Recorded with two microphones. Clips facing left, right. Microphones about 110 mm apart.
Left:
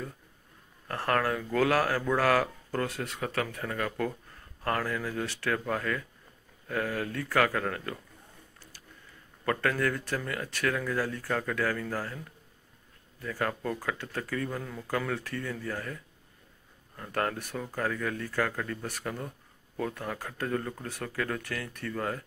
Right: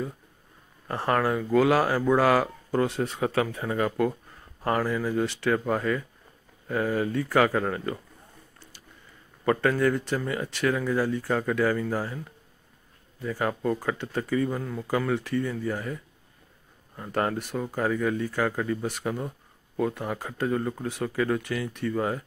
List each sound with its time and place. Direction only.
0.8 s speech: 15° right (ahead or behind)
3.3 s speech: 15° right (ahead or behind)
9.4 s speech: 15° right (ahead or behind)